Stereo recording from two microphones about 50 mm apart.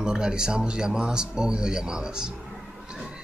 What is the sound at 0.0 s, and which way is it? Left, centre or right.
Speech, centre.